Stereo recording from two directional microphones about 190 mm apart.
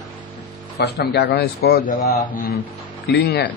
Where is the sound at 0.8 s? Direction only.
60° left (ahead or behind).